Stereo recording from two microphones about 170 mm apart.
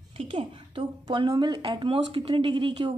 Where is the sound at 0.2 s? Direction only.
30° right (ahead or behind).